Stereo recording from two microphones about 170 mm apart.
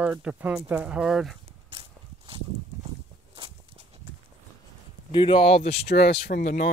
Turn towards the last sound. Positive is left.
turn(degrees=70)  # may be behind; listen again after turning